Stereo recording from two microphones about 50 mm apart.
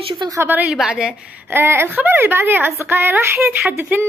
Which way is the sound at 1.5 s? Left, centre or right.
Right.